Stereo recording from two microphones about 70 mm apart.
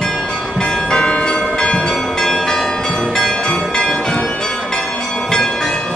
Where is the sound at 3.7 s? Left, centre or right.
Centre.